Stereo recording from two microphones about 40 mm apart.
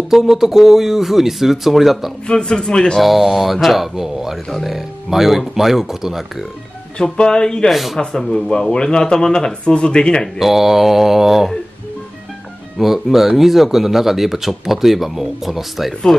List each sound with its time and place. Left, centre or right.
0.1 s speech: centre
2.2 s speech: left
3.0 s speech: centre
7.0 s speech: centre
7.7 s speech: centre
8.0 s speech: centre
10.4 s speech: centre
12.7 s speech: centre